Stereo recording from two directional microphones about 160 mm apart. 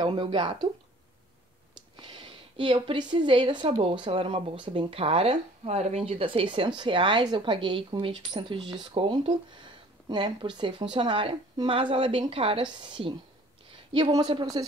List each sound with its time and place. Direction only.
0.0 s speech: 30° right (ahead or behind)
2.0 s a woman's voice: 30° right (ahead or behind)